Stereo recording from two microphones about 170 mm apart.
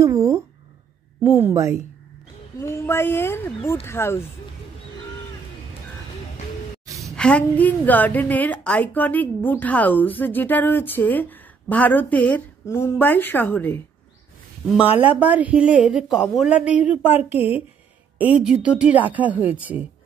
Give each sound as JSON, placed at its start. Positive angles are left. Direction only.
{"t": 0.0, "sound": "speech", "side_deg": -15}
{"t": 2.6, "sound": "a woman's voice", "side_deg": 15}
{"t": 7.2, "sound": "a woman's voice", "side_deg": 5}
{"t": 15.0, "sound": "speech", "side_deg": -10}